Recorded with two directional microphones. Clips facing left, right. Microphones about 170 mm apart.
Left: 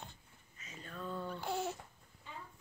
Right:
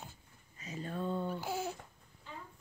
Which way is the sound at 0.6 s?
35° right (ahead or behind).